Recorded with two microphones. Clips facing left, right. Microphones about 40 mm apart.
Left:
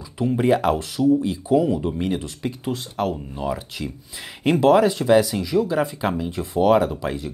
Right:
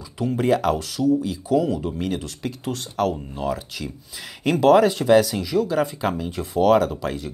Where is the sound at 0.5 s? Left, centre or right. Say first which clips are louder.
Even; centre.